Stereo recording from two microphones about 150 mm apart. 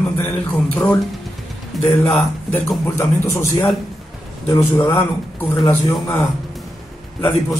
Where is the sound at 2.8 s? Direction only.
20° left (ahead or behind).